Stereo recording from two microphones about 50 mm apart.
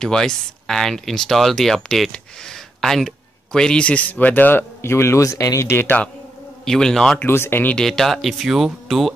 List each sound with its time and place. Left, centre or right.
0.0 s speech: centre
3.6 s speech: left
4.8 s speech: left
6.6 s speech: centre
7.2 s speech: left
7.8 s speech: centre